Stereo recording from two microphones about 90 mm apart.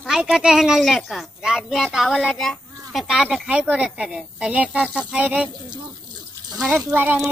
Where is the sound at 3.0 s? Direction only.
5° right (ahead or behind).